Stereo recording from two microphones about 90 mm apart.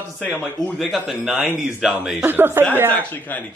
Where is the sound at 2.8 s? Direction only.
20° left (ahead or behind).